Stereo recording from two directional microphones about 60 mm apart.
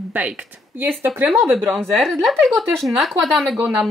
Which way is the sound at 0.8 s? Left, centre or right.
Right.